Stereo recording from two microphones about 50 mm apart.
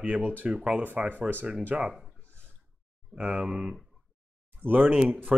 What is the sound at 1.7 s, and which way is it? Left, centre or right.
Speech, centre.